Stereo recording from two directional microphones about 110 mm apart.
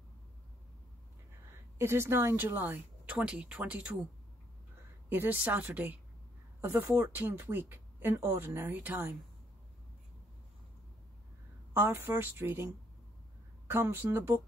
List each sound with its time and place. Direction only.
1.8 s speech: 25° right (ahead or behind)
5.1 s speech: 15° right (ahead or behind)
11.7 s speech: 20° right (ahead or behind)
13.7 s speech: 20° right (ahead or behind)